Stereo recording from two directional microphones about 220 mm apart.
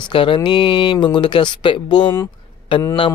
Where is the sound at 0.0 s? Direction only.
25° left (ahead or behind).